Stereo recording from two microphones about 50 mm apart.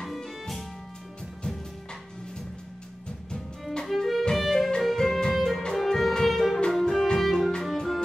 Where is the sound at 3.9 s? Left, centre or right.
Centre.